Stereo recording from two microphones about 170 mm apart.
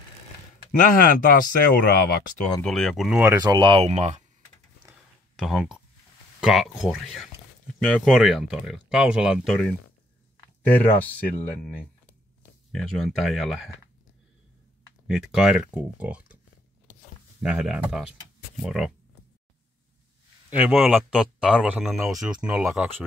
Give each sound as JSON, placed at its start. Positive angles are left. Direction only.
{"t": 0.7, "sound": "speech", "side_deg": 55}
{"t": 2.6, "sound": "speech", "side_deg": 5}
{"t": 3.4, "sound": "speech", "side_deg": -25}
{"t": 5.3, "sound": "speech", "side_deg": 0}
{"t": 12.7, "sound": "speech", "side_deg": 0}
{"t": 15.0, "sound": "speech", "side_deg": 0}
{"t": 17.4, "sound": "speech", "side_deg": -5}
{"t": 20.4, "sound": "speech", "side_deg": -10}